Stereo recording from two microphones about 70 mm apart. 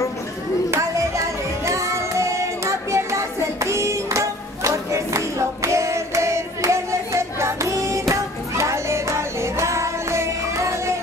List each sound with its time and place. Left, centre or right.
1.7 s child singing: right